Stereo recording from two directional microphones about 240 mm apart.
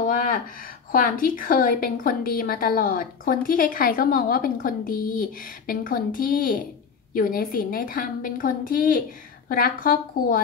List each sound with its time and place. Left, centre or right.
0.0 s a woman's voice: left